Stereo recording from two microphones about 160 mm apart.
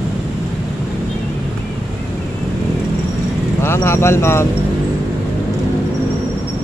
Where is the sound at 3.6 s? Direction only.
15° left (ahead or behind).